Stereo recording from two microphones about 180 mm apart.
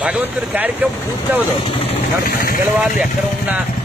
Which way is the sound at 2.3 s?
55° left (ahead or behind).